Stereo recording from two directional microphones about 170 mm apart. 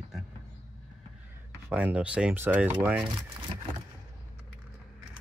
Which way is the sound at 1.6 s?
10° right (ahead or behind).